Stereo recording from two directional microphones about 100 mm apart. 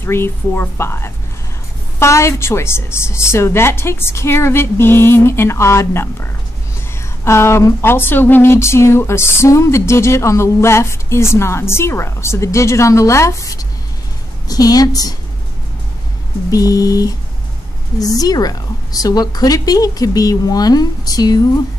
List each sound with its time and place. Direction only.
0.0 s a woman's voice: 25° left (ahead or behind)
16.4 s a woman's voice: 35° left (ahead or behind)